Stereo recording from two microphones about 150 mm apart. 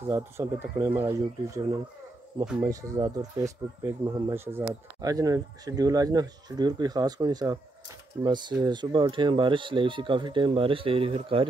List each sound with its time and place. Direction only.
0.1 s speech: 20° right (ahead or behind); by 11.4 s 35° right (ahead or behind)